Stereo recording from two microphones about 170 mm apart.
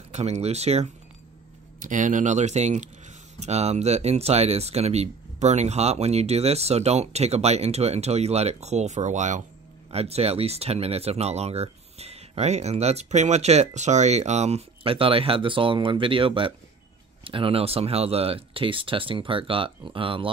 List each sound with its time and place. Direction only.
0.1 s speech: 40° right (ahead or behind)